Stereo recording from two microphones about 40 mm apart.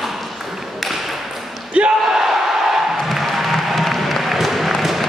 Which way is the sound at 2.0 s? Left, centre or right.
Centre.